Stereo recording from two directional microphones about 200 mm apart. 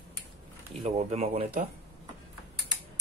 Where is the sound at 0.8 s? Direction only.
30° right (ahead or behind).